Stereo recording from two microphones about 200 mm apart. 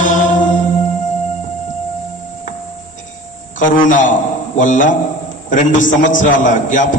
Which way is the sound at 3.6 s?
40° left (ahead or behind).